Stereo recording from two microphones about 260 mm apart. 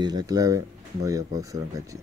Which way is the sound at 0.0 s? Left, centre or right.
Centre.